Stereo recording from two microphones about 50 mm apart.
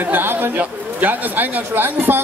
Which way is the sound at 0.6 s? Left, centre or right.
Right.